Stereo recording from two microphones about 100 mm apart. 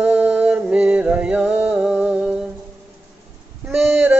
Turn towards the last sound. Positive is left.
turn(degrees=-15)  # may be behind; listen again after turning